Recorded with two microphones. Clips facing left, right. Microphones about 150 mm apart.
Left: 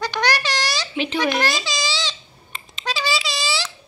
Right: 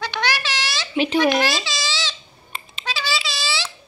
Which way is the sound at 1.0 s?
10° right (ahead or behind).